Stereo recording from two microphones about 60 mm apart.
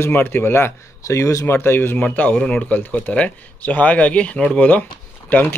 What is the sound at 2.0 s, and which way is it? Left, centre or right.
Speech, left.